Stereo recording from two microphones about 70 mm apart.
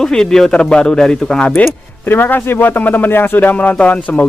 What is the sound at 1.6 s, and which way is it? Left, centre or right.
Speech, left.